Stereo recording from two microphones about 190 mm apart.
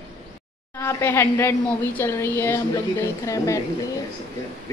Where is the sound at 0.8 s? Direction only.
15° left (ahead or behind).